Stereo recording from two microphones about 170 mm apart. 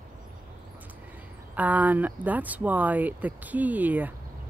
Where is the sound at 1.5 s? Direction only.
10° right (ahead or behind).